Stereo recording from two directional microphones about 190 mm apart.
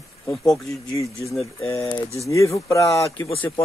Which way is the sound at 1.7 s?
15° left (ahead or behind).